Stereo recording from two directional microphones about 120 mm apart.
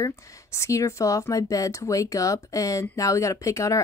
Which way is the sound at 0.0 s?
25° left (ahead or behind).